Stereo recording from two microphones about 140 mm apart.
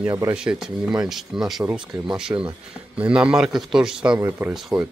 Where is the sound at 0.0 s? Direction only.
15° right (ahead or behind).